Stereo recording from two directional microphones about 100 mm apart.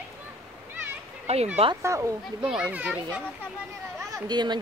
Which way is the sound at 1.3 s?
90° right.